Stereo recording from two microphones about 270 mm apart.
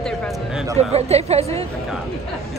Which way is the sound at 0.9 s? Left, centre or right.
Right.